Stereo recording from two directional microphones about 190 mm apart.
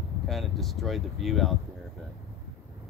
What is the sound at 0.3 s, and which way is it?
Speech, centre (ahead or behind).